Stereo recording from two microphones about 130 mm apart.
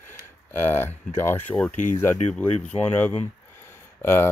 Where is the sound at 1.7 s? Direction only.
70° left (ahead or behind).